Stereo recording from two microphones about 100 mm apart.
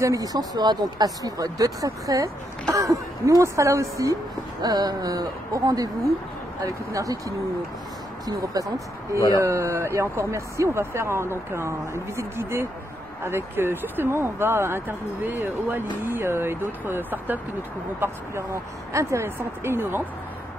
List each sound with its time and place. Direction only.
0.0 s speech: 35° right (ahead or behind)